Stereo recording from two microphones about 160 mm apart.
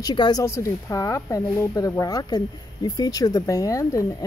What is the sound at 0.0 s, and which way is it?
Speech, 25° left (ahead or behind).